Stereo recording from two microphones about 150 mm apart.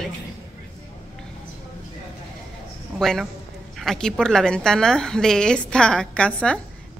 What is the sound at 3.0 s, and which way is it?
A woman's voice, 5° left (ahead or behind).